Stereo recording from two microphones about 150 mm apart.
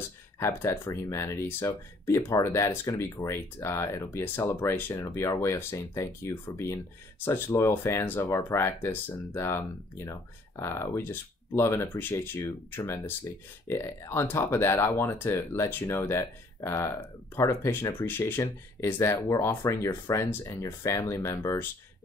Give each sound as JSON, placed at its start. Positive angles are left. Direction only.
{"t": 0.4, "sound": "speech", "side_deg": 15}